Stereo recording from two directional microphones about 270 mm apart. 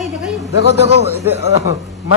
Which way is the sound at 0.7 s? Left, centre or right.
Right.